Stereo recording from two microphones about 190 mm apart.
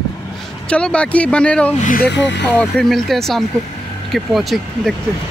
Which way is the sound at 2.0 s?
65° left (ahead or behind).